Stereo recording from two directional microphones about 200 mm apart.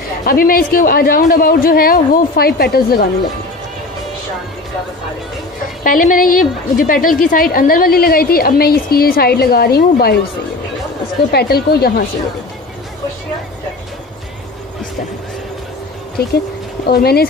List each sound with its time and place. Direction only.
0.2 s a woman's voice: 45° left (ahead or behind)
5.9 s a woman's voice: 45° left (ahead or behind)
11.3 s a woman's voice: 50° left (ahead or behind)
16.2 s a woman's voice: 50° left (ahead or behind)